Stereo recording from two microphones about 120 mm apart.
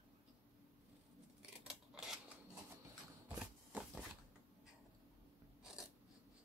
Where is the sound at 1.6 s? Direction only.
5° right (ahead or behind).